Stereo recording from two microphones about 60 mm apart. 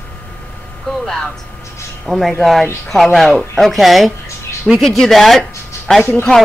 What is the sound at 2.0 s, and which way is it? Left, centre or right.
Speech, centre.